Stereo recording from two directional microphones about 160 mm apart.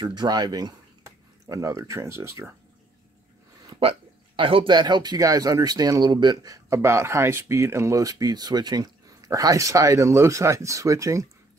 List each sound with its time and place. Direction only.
0.0 s speech: 30° right (ahead or behind)
4.4 s speech: 35° right (ahead or behind)